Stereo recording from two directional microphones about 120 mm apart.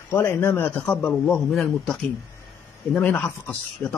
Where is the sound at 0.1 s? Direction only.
15° left (ahead or behind); by 2.0 s centre (ahead or behind).